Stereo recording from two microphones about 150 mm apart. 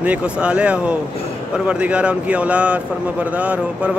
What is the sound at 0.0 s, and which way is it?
A man's voice, 10° right (ahead or behind).